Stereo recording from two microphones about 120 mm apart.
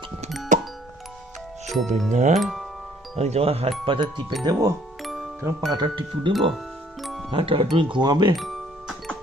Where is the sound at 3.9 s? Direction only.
40° right (ahead or behind).